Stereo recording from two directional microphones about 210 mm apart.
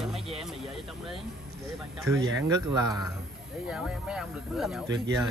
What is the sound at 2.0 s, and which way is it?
Speech, 15° right (ahead or behind).